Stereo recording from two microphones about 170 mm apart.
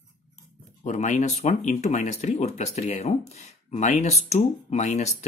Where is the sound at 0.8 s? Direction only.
45° left (ahead or behind).